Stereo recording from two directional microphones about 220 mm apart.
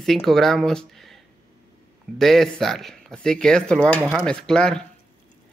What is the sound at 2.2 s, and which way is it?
Speech, centre (ahead or behind).